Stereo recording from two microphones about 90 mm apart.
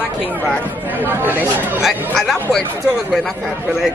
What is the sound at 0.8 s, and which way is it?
Speech, 20° right (ahead or behind).